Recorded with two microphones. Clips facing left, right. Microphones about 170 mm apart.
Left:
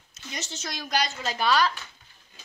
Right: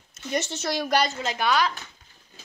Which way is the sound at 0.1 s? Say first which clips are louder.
Right 10 dB; 55° right (ahead or behind).